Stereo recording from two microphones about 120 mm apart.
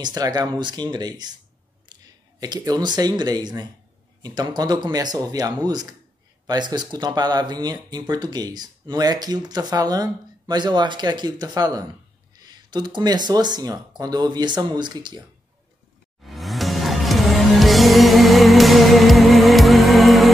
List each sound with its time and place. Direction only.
0.0 s speech: 35° right (ahead or behind)
1.9 s clicking: 35° right (ahead or behind)
2.4 s speech: 35° right (ahead or behind)
16.3 s music: centre (ahead or behind)